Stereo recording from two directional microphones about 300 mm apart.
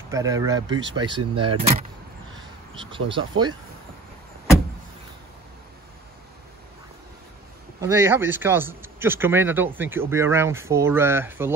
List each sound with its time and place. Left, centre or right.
0.1 s a man's voice: centre
1.3 s speech: right
1.6 s a man's voice: centre
7.8 s a man's voice: centre